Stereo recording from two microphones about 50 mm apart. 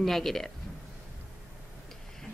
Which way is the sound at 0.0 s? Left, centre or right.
Centre.